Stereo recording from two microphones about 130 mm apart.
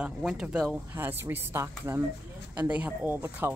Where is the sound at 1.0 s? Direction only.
15° right (ahead or behind).